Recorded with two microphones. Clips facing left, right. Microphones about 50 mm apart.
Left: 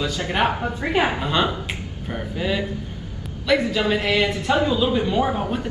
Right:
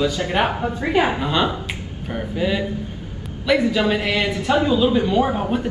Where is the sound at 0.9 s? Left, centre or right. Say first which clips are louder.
Right 1 dB; centre.